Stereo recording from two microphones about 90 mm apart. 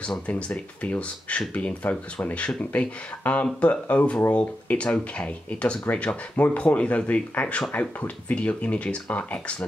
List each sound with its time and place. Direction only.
0.0 s speech: 15° left (ahead or behind)